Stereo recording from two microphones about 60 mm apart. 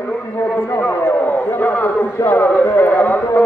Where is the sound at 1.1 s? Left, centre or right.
Left.